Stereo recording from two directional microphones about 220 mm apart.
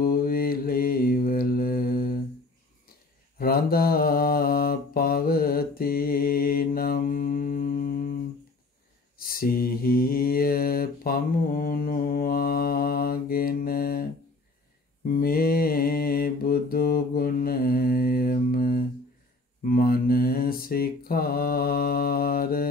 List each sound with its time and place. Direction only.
0.0 s mantra: 40° left (ahead or behind)
3.3 s mantra: 40° left (ahead or behind)
9.2 s mantra: 40° left (ahead or behind)
15.0 s mantra: 40° left (ahead or behind)